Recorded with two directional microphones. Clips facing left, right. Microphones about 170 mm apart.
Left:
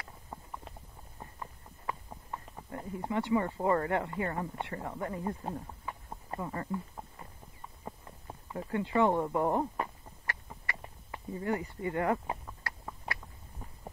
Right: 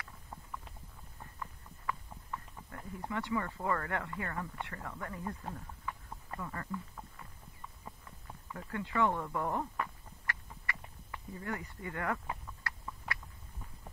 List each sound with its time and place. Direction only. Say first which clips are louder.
1.2 s clip-clop: left 2 dB; 25° left (ahead or behind)
2.7 s speech: left 6 dB; 25° left (ahead or behind)
7.8 s a sound: left 9 dB; 30° left (ahead or behind)